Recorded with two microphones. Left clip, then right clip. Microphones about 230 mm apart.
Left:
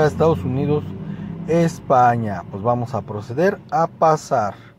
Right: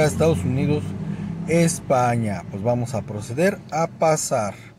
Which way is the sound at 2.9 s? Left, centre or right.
Centre.